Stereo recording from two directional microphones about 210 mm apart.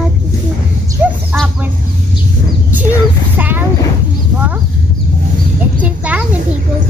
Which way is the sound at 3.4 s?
10° right (ahead or behind).